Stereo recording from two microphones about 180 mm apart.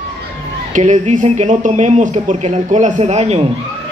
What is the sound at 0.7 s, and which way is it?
Speech, 40° right (ahead or behind).